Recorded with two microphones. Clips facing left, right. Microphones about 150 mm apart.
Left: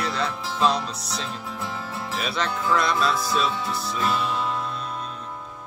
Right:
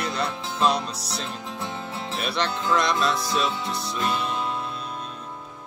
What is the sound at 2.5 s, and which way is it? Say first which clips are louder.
Music: left 1 dB; 20° right (ahead or behind).